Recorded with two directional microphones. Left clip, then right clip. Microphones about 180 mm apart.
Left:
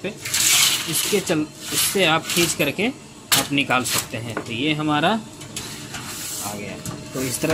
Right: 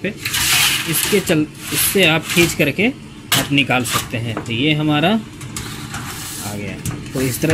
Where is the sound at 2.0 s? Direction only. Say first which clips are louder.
Right 5 dB; 10° right (ahead or behind).